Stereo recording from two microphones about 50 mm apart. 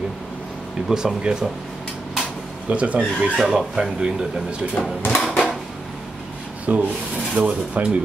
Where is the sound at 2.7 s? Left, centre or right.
Right.